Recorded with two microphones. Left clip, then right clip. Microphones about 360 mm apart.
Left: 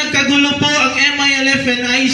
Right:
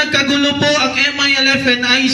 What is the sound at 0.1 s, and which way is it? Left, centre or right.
A man's voice, right.